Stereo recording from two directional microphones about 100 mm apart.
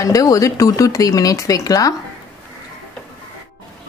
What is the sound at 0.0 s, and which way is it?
A woman's voice, 35° left (ahead or behind).